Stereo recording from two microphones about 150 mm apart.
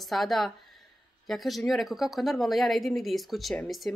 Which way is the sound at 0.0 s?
Centre (ahead or behind).